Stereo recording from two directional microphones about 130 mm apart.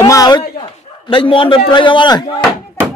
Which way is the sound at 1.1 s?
40° left (ahead or behind).